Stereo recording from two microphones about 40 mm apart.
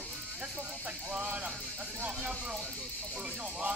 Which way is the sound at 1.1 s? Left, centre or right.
Right.